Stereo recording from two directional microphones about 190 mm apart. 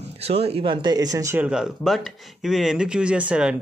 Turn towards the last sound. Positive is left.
turn(degrees=-5)  # may be behind; listen again after turning